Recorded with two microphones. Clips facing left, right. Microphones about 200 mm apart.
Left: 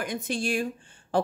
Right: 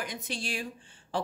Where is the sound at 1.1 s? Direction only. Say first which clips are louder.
Left 7 dB; 50° left (ahead or behind).